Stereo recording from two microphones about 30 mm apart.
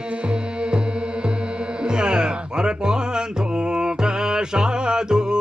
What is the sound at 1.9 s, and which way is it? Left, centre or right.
Music, right.